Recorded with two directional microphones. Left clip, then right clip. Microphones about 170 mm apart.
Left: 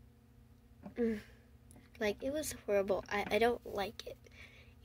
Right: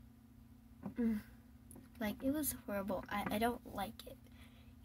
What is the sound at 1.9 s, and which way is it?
Speech, 15° left (ahead or behind).